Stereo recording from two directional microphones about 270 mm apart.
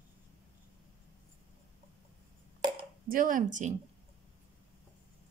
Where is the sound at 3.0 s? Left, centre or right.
Right.